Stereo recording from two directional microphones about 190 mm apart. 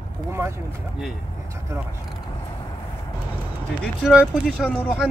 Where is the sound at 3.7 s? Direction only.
Centre (ahead or behind).